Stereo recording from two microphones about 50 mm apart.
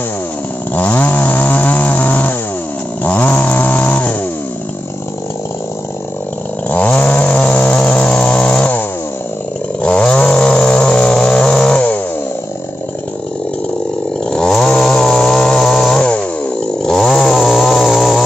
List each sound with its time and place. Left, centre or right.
0.7 s chainsaw: left
3.0 s snoring: left
6.7 s chainsaw: left
9.8 s chainsaw: left
14.3 s chainsaw: centre